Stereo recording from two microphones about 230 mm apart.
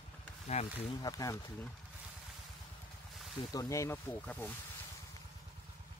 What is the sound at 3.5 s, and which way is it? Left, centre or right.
Speech, centre.